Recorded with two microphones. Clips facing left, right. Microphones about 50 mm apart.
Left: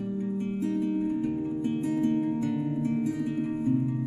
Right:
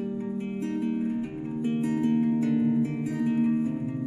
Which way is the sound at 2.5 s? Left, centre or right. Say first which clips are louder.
Right 3 dB; centre.